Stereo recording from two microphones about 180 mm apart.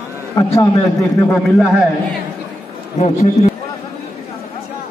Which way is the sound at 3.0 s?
40° left (ahead or behind).